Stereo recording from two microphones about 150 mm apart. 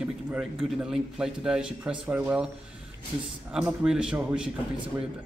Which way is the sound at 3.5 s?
5° right (ahead or behind).